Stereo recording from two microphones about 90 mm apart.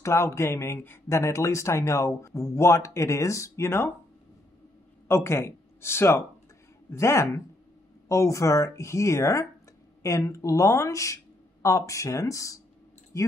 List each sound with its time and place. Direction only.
0.0 s a man's voice: 30° left (ahead or behind)
5.0 s a man's voice: 30° left (ahead or behind)